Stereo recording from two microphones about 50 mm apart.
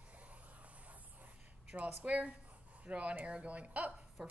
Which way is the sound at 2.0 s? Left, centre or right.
Right.